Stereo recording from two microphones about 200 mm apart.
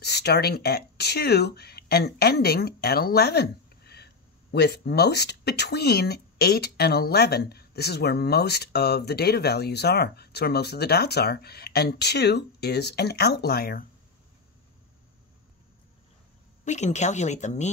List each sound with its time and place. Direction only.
0.0 s speech: 55° left (ahead or behind)
16.6 s speech: 35° left (ahead or behind)